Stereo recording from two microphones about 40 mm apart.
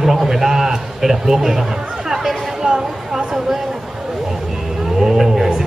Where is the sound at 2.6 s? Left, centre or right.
Centre.